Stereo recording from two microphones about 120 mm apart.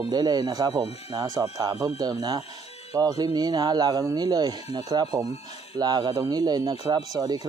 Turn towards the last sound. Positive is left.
turn(degrees=-35)  # may be behind; listen again after turning